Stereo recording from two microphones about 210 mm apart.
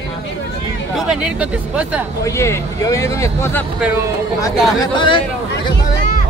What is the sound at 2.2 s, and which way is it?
Speech, 15° left (ahead or behind).